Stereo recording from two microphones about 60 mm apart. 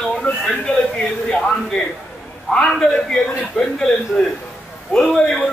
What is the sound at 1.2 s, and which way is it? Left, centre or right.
Speech, centre.